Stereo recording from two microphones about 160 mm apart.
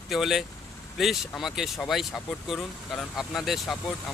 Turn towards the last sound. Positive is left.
turn(degrees=0)  # may be behind; listen again after turning